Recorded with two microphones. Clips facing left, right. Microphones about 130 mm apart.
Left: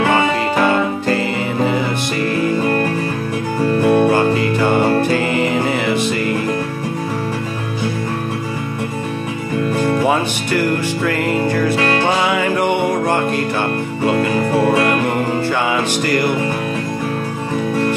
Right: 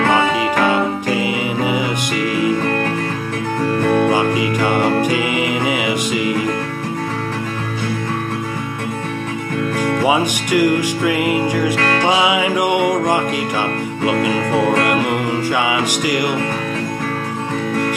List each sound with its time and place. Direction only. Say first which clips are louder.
0.7 s music: left 1 dB; 10° right (ahead or behind)
2.6 s music: left 2 dB; 10° left (ahead or behind)
4.1 s music: left 1 dB; 10° right (ahead or behind)
9.8 s music: left 2 dB; 10° left (ahead or behind)
10.0 s music: even; 10° right (ahead or behind)
14.0 s music: left 1 dB; 10° right (ahead or behind)